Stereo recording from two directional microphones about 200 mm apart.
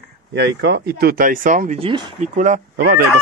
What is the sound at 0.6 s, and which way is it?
Speech, 55° right (ahead or behind).